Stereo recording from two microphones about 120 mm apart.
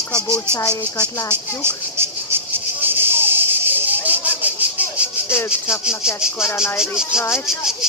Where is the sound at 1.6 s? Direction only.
20° right (ahead or behind).